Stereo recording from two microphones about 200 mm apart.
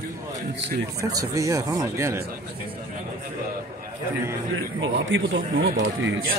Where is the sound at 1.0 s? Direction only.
15° right (ahead or behind).